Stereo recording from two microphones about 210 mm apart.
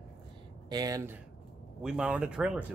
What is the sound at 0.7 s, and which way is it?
Speech, 20° right (ahead or behind).